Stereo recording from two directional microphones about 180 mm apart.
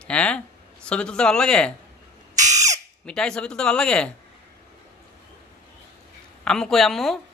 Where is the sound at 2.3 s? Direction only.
40° right (ahead or behind).